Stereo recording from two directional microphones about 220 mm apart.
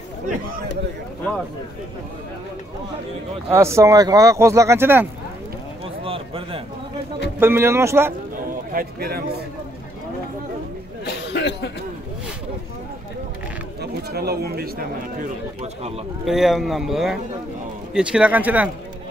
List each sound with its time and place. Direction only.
3.4 s speech: 10° right (ahead or behind)
6.0 s a man's voice: 25° right (ahead or behind)
7.3 s speech: 10° right (ahead or behind)
8.7 s speech: 45° right (ahead or behind)
11.1 s cough: 50° left (ahead or behind)
13.7 s speech: 45° right (ahead or behind)
16.3 s speech: centre (ahead or behind)